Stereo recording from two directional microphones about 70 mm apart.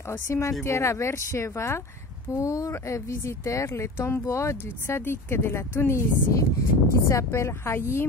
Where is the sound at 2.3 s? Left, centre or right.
Left.